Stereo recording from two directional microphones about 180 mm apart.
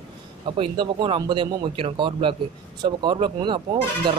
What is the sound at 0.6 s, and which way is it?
Speech, 25° right (ahead or behind).